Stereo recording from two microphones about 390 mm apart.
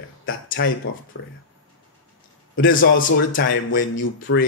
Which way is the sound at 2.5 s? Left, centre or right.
Left.